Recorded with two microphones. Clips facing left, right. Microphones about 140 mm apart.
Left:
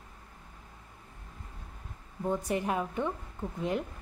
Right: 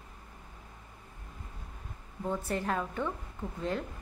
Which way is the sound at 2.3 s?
15° left (ahead or behind).